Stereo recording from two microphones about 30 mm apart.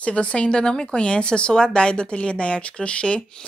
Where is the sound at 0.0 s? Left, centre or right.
Left.